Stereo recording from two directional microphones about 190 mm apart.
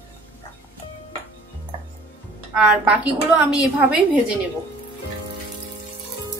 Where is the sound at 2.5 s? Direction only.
5° right (ahead or behind).